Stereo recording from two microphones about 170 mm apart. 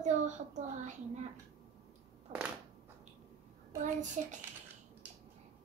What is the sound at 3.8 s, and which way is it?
Speech, 45° right (ahead or behind).